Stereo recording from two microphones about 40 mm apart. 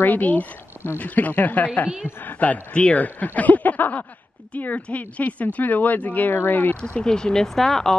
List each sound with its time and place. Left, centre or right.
0.0 s speech: left
2.7 s speech: left
3.3 s speech: left
6.8 s speech: centre
7.4 s speech: centre